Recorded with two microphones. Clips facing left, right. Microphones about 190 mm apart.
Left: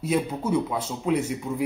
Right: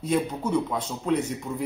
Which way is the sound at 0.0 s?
10° left (ahead or behind).